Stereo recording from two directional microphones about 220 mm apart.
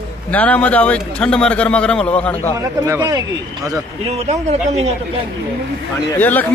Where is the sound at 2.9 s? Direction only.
15° right (ahead or behind).